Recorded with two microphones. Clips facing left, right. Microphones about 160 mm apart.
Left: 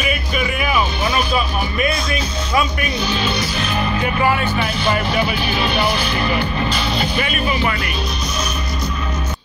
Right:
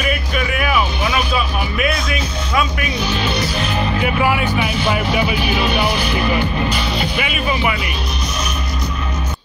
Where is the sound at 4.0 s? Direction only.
10° right (ahead or behind).